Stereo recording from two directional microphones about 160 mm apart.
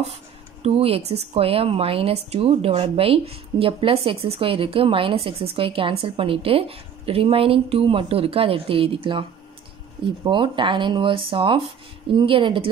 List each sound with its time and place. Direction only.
0.6 s speech: 35° right (ahead or behind)
10.2 s speech: 30° right (ahead or behind)